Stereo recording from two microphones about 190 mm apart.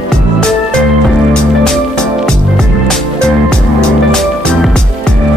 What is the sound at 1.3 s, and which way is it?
Music, 5° left (ahead or behind).